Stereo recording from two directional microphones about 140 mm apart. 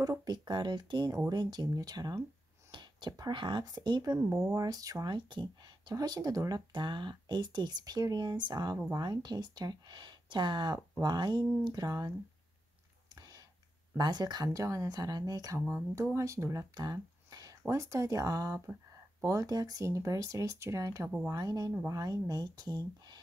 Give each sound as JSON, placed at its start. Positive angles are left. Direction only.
{"t": 0.0, "sound": "speech", "side_deg": -25}
{"t": 13.1, "sound": "clicking", "side_deg": -25}
{"t": 13.9, "sound": "speech", "side_deg": -30}